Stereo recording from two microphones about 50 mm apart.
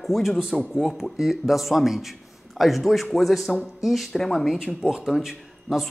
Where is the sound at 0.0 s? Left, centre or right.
Centre.